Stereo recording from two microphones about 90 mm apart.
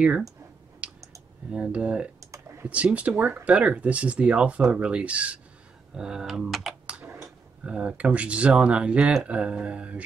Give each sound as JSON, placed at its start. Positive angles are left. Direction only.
{"t": 0.8, "sound": "clicking", "side_deg": -15}
{"t": 1.5, "sound": "speech", "side_deg": -10}
{"t": 6.9, "sound": "typing", "side_deg": -15}
{"t": 7.2, "sound": "speech", "side_deg": -10}